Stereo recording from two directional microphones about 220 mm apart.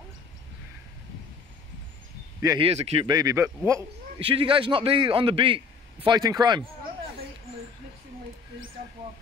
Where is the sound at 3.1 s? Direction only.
15° right (ahead or behind).